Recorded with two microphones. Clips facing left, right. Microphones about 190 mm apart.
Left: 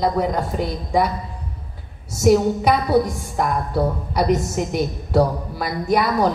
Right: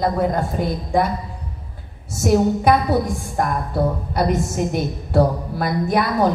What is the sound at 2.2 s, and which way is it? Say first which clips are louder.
A woman's voice: even; 55° right (ahead or behind).